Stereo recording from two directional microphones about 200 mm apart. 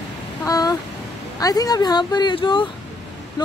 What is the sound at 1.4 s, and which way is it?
Speech, 20° left (ahead or behind).